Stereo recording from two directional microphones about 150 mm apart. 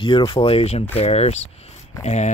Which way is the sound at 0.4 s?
40° left (ahead or behind).